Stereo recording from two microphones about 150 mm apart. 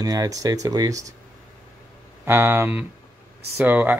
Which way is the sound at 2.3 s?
15° right (ahead or behind).